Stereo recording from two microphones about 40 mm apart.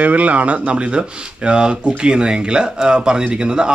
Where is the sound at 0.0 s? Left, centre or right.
Right.